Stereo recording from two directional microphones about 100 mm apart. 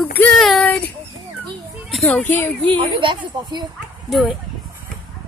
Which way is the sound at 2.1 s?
15° left (ahead or behind).